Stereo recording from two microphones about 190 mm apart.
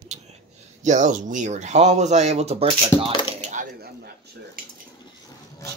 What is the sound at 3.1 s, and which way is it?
Speech, 25° left (ahead or behind).